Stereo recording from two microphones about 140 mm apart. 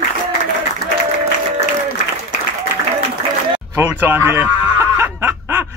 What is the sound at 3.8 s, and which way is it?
Speech, 20° right (ahead or behind).